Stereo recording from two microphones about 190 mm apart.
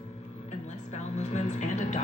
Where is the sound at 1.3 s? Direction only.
40° left (ahead or behind).